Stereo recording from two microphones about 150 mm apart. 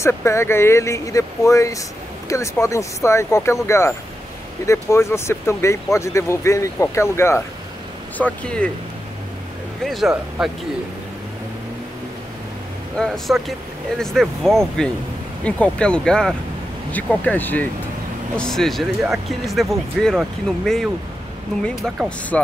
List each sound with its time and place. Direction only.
0.0 s speech: 20° left (ahead or behind)
9.8 s speech: centre (ahead or behind)
12.9 s speech: 5° left (ahead or behind)